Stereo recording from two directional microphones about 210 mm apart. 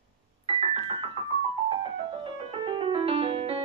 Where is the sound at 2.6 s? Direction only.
25° right (ahead or behind).